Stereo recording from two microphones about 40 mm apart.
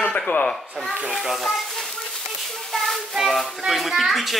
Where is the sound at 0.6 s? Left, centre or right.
Centre.